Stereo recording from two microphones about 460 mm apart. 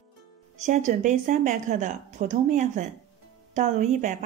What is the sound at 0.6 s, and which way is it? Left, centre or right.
Speech, centre.